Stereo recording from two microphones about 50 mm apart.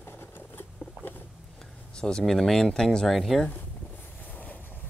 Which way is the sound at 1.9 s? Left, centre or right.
Centre.